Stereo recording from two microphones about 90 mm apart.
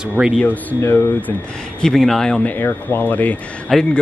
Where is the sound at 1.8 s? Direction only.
5° left (ahead or behind).